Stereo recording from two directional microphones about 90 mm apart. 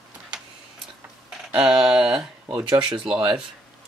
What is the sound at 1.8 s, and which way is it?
Speech, 10° right (ahead or behind).